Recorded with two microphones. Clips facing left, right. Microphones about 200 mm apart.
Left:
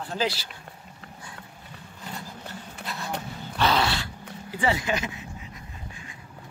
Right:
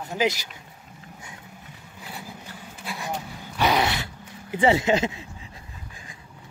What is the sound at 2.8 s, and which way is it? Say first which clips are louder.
Vehicle: right 2 dB; 10° right (ahead or behind).